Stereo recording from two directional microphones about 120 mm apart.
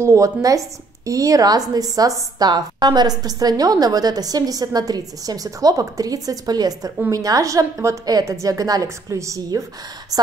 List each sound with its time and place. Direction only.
0.0 s a woman's voice: 25° right (ahead or behind)